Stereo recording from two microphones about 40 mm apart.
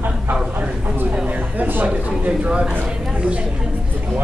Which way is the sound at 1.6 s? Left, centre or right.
Right.